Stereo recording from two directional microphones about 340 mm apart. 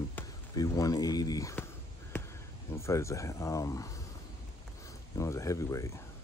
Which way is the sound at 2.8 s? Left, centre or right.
Centre.